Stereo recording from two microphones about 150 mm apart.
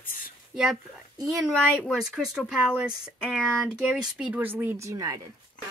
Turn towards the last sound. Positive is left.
turn(degrees=-20)  # may be behind; listen again after turning